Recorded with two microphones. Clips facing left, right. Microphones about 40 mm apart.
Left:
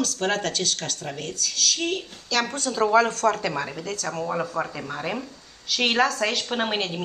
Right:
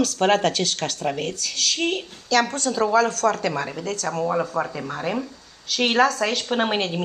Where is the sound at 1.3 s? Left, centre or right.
Centre.